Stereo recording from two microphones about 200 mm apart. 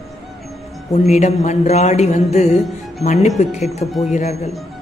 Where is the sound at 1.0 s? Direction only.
35° left (ahead or behind).